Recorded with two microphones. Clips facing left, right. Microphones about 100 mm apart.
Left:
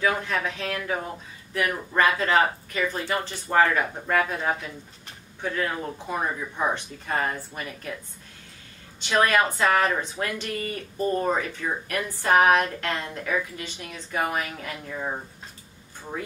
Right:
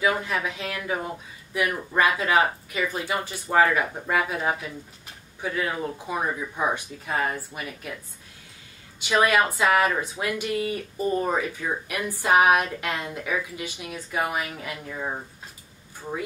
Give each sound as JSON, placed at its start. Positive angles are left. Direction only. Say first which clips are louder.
{"t": 0.0, "sound": "speech", "louder": "even", "side_deg": -10}
{"t": 9.0, "sound": "speech", "louder": "right 1 dB", "side_deg": -5}